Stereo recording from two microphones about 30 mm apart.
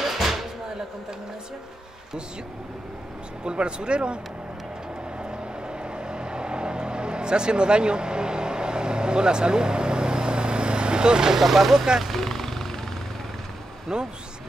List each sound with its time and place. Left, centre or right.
0.0 s a sound: centre
3.4 s speech: right
5.3 s vehicle: right
11.4 s speech: centre
11.7 s speech: right
12.0 s speech: centre
13.9 s speech: right